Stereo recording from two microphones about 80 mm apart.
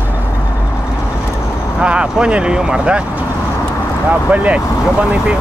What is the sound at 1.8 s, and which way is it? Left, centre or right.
Speech, centre.